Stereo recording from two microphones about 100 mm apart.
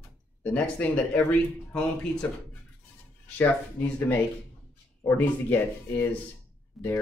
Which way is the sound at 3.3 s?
15° left (ahead or behind).